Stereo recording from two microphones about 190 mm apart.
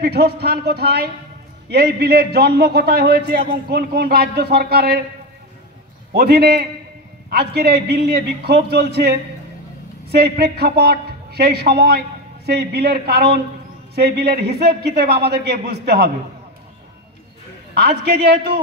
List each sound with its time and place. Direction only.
0.0 s a man's voice: 55° right (ahead or behind)
6.1 s a man's voice: 60° right (ahead or behind)
17.7 s a man's voice: 55° right (ahead or behind)